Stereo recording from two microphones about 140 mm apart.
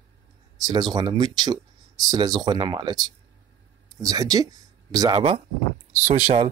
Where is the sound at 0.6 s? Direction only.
30° right (ahead or behind).